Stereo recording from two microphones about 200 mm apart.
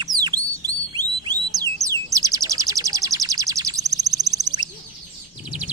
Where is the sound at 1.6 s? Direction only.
15° right (ahead or behind).